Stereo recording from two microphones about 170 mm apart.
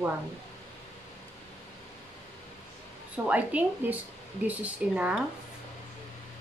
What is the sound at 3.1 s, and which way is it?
A woman's voice, 10° right (ahead or behind).